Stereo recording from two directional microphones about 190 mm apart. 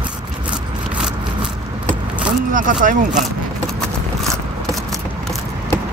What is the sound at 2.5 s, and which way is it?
Speech, 45° right (ahead or behind).